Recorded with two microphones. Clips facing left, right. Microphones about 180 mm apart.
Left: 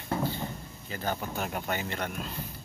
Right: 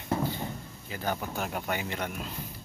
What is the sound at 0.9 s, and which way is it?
Speech, 10° right (ahead or behind).